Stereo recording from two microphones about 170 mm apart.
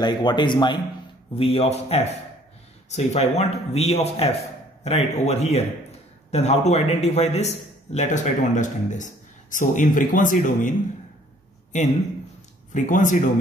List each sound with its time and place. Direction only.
0.0 s a man's voice: 25° left (ahead or behind); by 10.7 s 50° left (ahead or behind)
12.7 s speech: 50° left (ahead or behind)